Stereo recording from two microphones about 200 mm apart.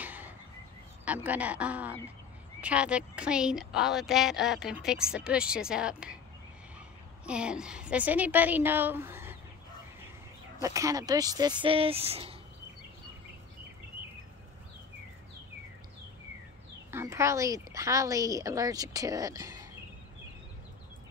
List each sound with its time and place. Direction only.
0.0 s a sound: 10° right (ahead or behind)
1.0 s a woman's voice: 10° right (ahead or behind)
7.2 s a woman's voice: 5° right (ahead or behind)
10.6 s speech: 15° right (ahead or behind)
16.9 s a woman's voice: 15° right (ahead or behind)